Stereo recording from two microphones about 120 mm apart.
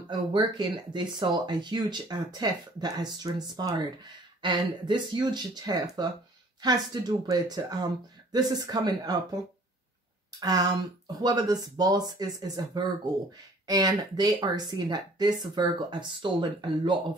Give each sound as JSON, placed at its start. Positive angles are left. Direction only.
{"t": 0.1, "sound": "speech", "side_deg": -40}
{"t": 10.4, "sound": "speech", "side_deg": -35}